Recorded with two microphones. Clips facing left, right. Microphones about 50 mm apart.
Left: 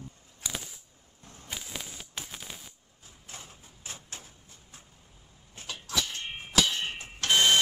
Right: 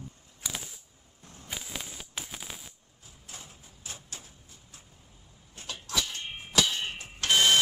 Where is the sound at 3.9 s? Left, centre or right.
Left.